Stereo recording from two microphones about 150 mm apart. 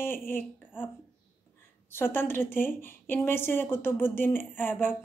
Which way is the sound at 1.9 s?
15° left (ahead or behind).